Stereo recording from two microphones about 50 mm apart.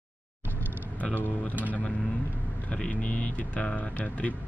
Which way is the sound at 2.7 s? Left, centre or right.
Left.